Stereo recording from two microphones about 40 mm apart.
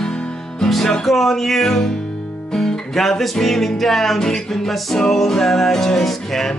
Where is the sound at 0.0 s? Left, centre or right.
Centre.